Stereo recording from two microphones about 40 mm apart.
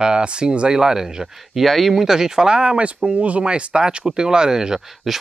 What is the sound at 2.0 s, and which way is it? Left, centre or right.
Speech, centre.